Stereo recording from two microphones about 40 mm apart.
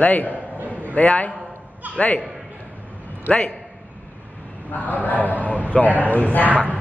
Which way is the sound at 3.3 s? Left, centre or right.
Left.